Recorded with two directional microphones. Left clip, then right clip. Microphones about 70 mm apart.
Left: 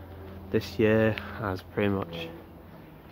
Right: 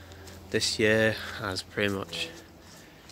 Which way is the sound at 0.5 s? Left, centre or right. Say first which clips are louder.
Even; centre.